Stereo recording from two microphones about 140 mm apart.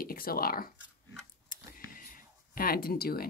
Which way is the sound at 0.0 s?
90° left.